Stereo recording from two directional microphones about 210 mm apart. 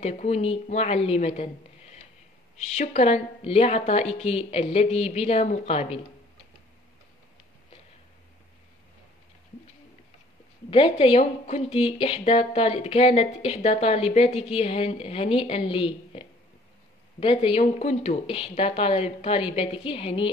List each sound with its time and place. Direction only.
0.0 s speech: 30° left (ahead or behind)
2.6 s speech: 35° left (ahead or behind)
10.7 s speech: 25° left (ahead or behind)